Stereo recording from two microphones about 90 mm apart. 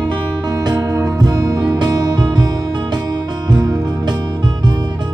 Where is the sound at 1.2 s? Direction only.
40° right (ahead or behind).